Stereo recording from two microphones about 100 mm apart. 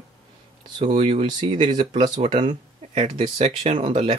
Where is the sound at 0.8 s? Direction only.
80° right.